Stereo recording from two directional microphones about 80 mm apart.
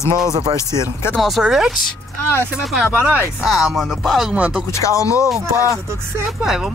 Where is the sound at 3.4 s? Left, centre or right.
Centre.